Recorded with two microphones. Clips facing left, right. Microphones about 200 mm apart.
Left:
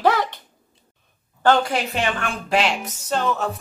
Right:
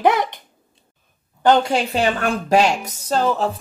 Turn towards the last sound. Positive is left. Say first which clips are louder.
# right 4 dB
turn(degrees=-35)  # may be behind; listen again after turning